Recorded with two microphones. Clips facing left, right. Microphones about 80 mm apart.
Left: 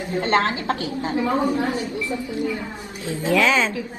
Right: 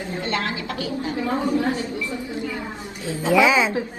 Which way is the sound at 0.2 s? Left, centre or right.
Left.